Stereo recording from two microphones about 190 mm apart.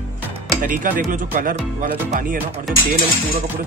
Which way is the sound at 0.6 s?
45° right (ahead or behind).